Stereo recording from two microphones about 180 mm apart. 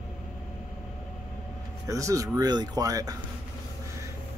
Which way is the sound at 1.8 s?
20° right (ahead or behind).